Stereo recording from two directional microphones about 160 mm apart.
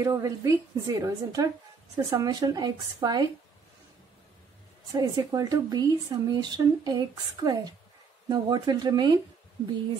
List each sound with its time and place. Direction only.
0.0 s speech: 20° right (ahead or behind)
4.9 s speech: 25° right (ahead or behind)